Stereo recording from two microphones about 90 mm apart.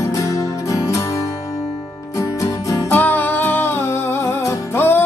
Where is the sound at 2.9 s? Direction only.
20° left (ahead or behind).